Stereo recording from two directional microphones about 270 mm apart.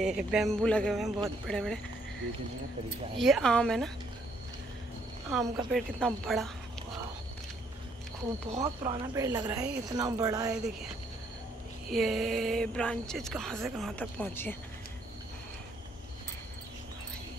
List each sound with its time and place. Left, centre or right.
0.0 s speech: centre
3.2 s speech: centre
5.7 s speech: centre
8.5 s speech: right
9.1 s a woman's voice: centre
10.5 s speech: centre
11.9 s speech: centre